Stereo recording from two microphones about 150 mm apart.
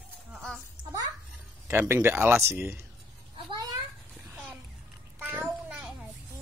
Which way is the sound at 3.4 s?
30° right (ahead or behind).